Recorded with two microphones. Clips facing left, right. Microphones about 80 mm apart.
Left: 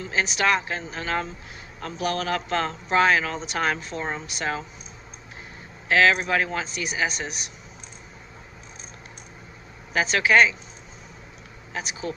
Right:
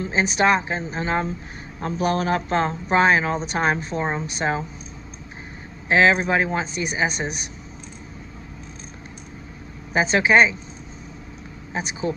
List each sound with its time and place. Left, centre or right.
0.0 s speech: right
5.9 s speech: right
9.9 s speech: right
11.7 s speech: right